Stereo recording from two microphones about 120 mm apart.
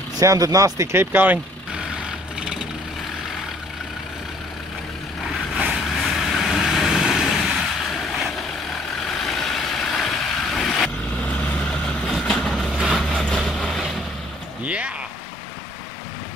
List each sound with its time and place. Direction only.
0.2 s speech: 30° right (ahead or behind)
1.1 s speech: 15° right (ahead or behind)
2.0 s vehicle: 5° right (ahead or behind)
5.7 s vehicle: centre (ahead or behind)
9.3 s vehicle: 5° left (ahead or behind)
14.6 s a sound: 10° right (ahead or behind)